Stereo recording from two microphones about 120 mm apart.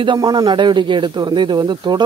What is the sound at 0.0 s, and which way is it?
Speech, 35° right (ahead or behind).